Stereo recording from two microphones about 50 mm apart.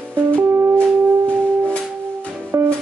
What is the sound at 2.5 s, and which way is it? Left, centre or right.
Music, right.